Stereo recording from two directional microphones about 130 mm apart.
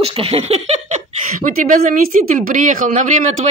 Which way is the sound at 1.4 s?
85° right.